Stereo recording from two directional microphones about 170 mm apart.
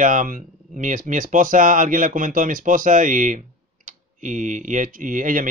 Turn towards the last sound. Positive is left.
turn(degrees=-50)  # may be behind; listen again after turning